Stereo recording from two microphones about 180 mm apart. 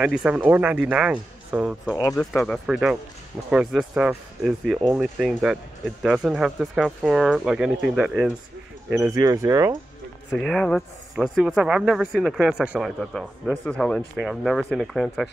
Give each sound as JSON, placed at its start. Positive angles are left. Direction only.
{"t": 0.0, "sound": "speech", "side_deg": -5}
{"t": 9.1, "sound": "speech", "side_deg": -20}
{"t": 10.3, "sound": "speech", "side_deg": 5}